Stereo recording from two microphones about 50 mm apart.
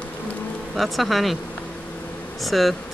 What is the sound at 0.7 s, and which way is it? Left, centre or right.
Speech, centre.